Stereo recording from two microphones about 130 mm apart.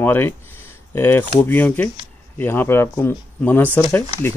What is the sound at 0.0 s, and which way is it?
Speech, 15° left (ahead or behind).